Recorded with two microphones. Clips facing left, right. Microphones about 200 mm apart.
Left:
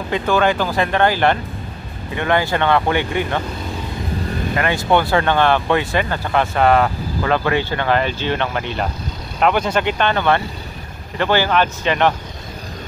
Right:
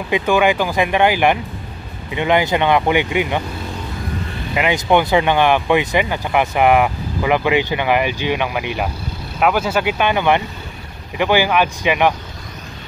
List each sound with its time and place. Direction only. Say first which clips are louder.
0.1 s speech: right 2 dB; 15° right (ahead or behind)
4.6 s speech: right 2 dB; 15° right (ahead or behind)